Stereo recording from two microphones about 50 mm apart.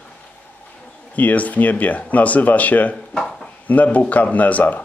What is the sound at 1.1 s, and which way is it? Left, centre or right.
Speech, left.